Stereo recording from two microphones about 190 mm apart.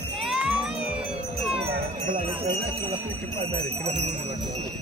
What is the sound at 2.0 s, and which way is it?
Jingle bell, 25° right (ahead or behind).